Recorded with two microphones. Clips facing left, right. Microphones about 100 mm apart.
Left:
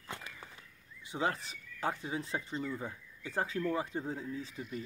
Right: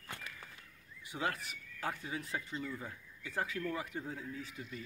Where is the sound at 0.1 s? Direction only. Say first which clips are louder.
Left 3 dB; 25° left (ahead or behind).